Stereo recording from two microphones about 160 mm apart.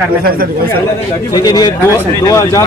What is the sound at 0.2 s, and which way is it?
Speech, 65° right (ahead or behind).